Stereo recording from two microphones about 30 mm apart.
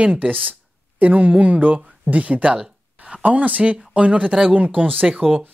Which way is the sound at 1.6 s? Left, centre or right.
Right.